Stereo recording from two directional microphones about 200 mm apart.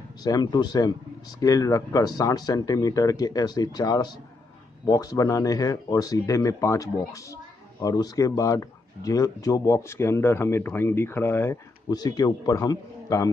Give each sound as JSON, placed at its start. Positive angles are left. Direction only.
{"t": 0.2, "sound": "speech", "side_deg": 20}